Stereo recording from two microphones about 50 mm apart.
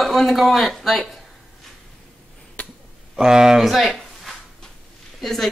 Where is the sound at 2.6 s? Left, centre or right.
Left.